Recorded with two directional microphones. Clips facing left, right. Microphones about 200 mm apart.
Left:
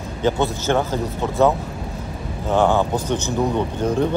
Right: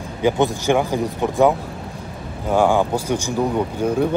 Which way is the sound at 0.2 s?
15° right (ahead or behind).